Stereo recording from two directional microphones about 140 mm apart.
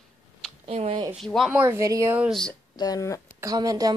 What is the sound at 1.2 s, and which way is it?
Speech, centre (ahead or behind).